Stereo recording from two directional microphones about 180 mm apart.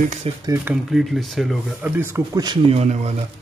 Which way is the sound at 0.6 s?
Centre (ahead or behind).